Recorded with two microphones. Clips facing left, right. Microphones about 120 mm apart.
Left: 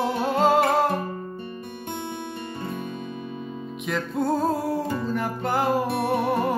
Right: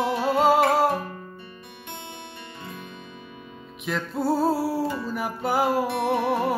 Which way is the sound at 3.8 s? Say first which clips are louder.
Left 1 dB; centre (ahead or behind).